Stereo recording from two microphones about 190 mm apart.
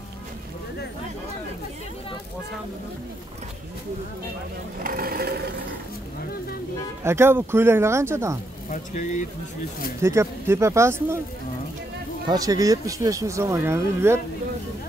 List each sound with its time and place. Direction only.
4.7 s speech: 50° right (ahead or behind)
7.0 s speech: 15° right (ahead or behind)
8.6 s speech: 40° left (ahead or behind)
10.0 s speech: 15° right (ahead or behind)
12.3 s speech: 20° right (ahead or behind)